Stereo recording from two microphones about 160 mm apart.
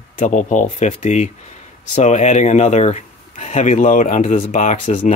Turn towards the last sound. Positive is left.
turn(degrees=55)  # may be behind; listen again after turning